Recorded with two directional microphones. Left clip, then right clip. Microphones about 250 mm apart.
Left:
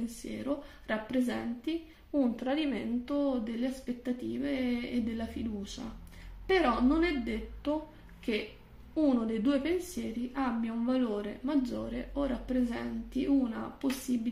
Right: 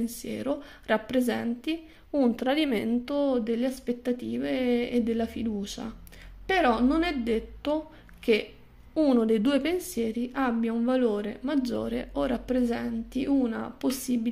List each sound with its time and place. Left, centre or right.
0.0 s speech: right
8.9 s speech: right